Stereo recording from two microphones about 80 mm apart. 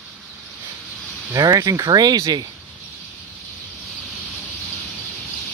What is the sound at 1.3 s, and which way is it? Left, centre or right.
Speech, right.